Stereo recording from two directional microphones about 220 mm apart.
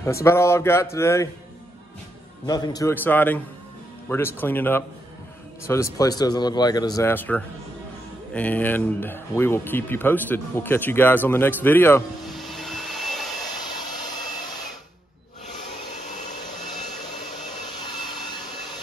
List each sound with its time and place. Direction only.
0.0 s speech: 15° left (ahead or behind)
2.4 s speech: 15° left (ahead or behind); by 13.3 s centre (ahead or behind)